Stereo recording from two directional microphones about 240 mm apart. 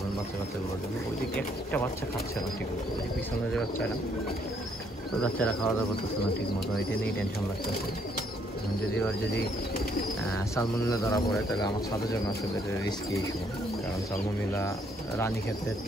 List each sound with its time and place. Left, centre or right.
1.3 s speech: centre
5.2 s speech: centre
10.5 s speech: centre